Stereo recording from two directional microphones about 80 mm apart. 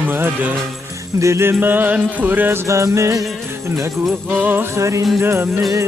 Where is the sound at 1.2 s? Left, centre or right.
Right.